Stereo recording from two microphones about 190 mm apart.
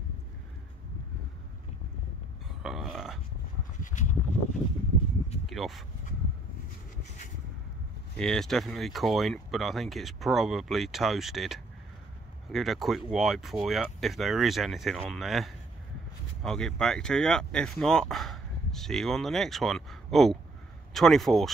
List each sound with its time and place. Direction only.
2.6 s burping: centre (ahead or behind)
3.8 s a sound: 40° left (ahead or behind)
5.5 s speech: centre (ahead or behind)
8.2 s speech: centre (ahead or behind)